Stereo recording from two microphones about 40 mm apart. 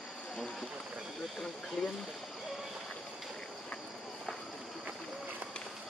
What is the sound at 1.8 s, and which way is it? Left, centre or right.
Speech, centre.